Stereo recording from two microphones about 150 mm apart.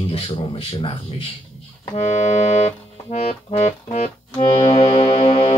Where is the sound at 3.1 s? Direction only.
45° left (ahead or behind).